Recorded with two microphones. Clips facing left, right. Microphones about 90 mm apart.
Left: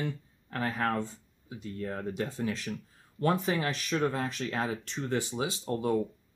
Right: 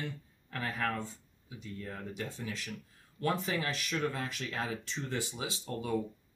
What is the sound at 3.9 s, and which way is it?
Speech, 35° left (ahead or behind).